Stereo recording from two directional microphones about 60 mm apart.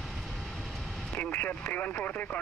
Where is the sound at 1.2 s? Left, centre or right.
Left.